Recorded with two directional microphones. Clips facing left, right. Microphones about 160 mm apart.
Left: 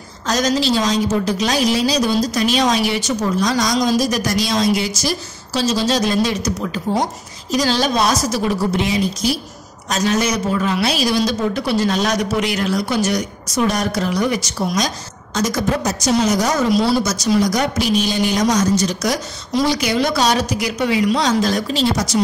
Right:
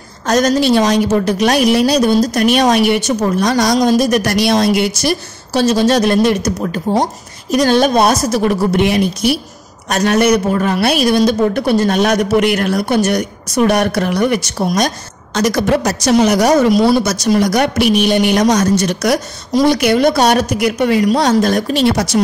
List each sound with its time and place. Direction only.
0.3 s a woman's voice: 55° right (ahead or behind)
6.6 s speech: 40° right (ahead or behind)
7.5 s a woman's voice: 55° right (ahead or behind)